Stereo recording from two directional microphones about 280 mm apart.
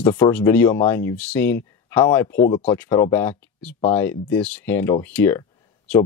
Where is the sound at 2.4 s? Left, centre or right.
Centre.